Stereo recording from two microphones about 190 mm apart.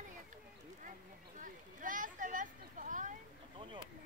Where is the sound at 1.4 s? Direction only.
45° right (ahead or behind).